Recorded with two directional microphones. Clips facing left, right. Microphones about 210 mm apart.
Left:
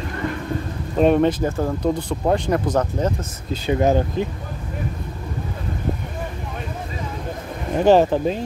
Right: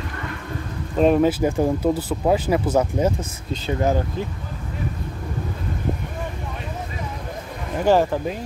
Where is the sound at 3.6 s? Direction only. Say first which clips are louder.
Left 4 dB; 20° left (ahead or behind).